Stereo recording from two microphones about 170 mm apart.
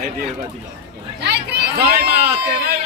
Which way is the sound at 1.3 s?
75° right (ahead or behind).